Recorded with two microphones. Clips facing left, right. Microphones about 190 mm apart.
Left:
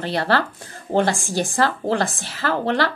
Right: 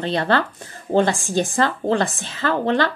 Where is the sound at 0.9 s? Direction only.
15° left (ahead or behind).